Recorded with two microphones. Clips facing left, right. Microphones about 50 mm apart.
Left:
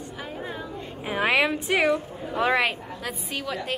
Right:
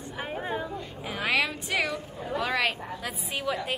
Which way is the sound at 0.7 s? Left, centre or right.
Left.